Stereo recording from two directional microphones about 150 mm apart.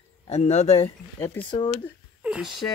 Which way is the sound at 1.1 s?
15° left (ahead or behind).